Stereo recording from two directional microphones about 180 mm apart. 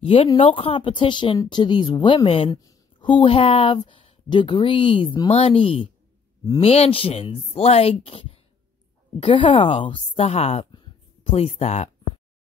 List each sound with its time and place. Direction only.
0.0 s a woman's voice: 30° left (ahead or behind)